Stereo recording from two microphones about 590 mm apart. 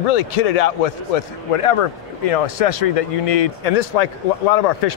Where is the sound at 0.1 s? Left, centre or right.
Left.